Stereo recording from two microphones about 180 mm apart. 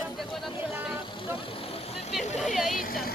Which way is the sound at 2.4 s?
Centre (ahead or behind).